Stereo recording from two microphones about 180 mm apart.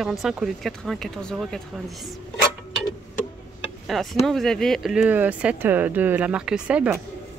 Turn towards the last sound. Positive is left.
turn(degrees=-5)  # may be behind; listen again after turning